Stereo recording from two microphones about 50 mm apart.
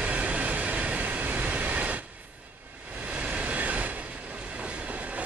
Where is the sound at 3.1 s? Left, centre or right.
Right.